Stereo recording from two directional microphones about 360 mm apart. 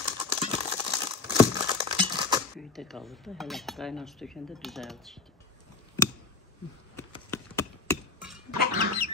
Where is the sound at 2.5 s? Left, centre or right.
Centre.